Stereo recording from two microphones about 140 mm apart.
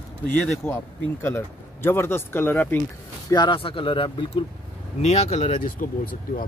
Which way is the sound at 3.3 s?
35° left (ahead or behind).